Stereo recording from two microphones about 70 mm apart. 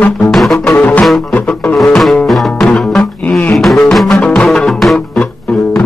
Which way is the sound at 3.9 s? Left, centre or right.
Centre.